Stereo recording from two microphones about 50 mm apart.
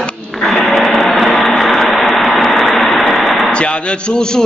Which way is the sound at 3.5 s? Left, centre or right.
Left.